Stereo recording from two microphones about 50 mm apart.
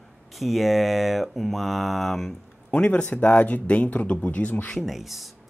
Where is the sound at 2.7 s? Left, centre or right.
Left.